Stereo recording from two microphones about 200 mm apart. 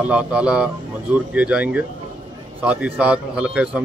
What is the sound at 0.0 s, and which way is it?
Speech, 5° right (ahead or behind).